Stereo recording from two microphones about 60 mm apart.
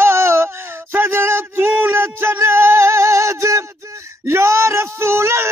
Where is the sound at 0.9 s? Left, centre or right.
Right.